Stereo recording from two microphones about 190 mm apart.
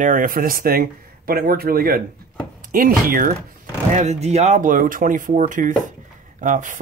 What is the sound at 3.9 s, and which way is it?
Speech, 35° right (ahead or behind).